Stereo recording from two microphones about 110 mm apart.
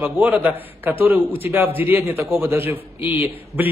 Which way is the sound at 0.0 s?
15° right (ahead or behind).